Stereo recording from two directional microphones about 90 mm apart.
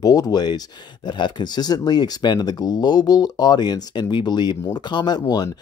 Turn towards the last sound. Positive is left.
turn(degrees=45)  # may be behind; listen again after turning